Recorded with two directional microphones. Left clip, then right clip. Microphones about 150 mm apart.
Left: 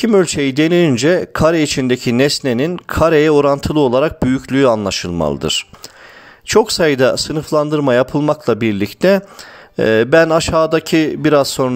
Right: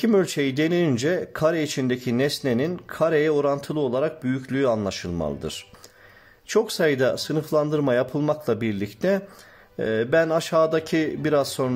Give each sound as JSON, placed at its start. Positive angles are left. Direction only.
{"t": 0.0, "sound": "speech", "side_deg": 35}